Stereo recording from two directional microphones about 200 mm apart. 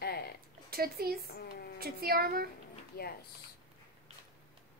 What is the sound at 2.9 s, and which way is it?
Speech, 50° left (ahead or behind).